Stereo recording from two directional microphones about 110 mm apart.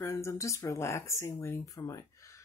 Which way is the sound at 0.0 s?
25° left (ahead or behind).